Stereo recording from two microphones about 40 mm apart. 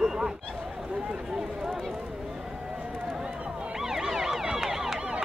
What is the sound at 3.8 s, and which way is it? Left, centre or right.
Emergency vehicle, centre.